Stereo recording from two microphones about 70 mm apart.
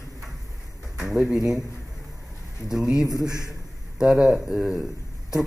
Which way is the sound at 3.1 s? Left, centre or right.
Right.